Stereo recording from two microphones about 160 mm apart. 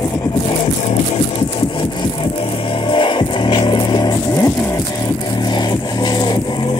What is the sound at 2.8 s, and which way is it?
Music, 30° left (ahead or behind).